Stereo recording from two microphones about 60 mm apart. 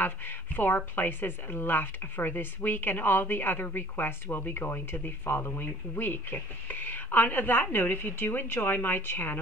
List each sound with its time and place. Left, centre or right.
0.0 s speech: left